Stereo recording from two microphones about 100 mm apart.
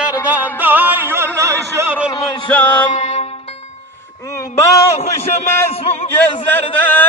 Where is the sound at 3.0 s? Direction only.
90° left.